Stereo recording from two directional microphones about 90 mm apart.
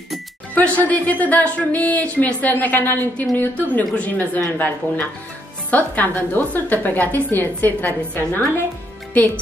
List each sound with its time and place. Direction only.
0.6 s a woman's voice: 20° left (ahead or behind)